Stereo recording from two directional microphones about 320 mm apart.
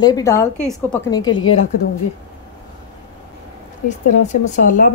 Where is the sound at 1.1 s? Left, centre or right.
Centre.